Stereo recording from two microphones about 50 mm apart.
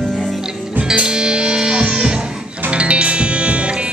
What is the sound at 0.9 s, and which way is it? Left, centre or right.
Music, centre.